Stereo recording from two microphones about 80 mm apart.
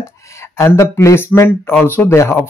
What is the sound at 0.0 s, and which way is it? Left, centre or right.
Speech, left.